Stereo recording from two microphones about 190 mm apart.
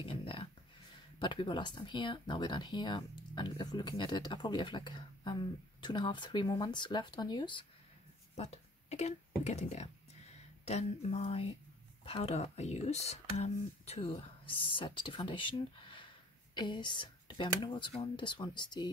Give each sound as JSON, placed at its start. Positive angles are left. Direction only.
{"t": 0.0, "sound": "a sound", "side_deg": 30}
{"t": 1.2, "sound": "speech", "side_deg": 25}
{"t": 8.4, "sound": "speech", "side_deg": 35}